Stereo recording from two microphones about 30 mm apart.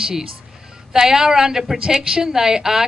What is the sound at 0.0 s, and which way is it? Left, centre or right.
A woman's voice, centre.